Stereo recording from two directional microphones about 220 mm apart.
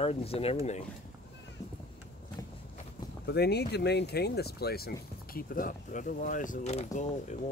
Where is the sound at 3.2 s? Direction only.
50° left (ahead or behind); by 7.3 s 30° left (ahead or behind).